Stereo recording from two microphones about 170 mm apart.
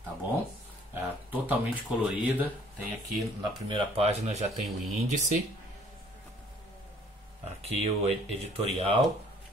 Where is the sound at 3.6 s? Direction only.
35° right (ahead or behind).